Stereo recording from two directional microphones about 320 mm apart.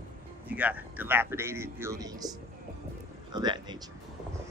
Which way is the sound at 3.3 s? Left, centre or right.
Centre.